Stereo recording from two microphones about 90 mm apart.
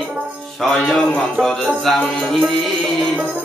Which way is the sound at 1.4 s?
5° left (ahead or behind).